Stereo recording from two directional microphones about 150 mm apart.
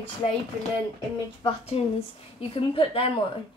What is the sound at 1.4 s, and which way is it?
A woman's voice, 40° left (ahead or behind).